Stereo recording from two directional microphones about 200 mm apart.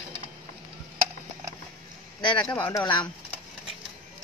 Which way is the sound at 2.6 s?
20° left (ahead or behind).